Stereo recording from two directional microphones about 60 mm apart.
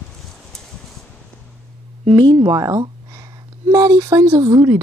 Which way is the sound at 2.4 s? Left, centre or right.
Right.